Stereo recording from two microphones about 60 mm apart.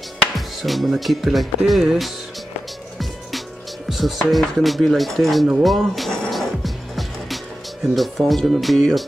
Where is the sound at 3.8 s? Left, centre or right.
Centre.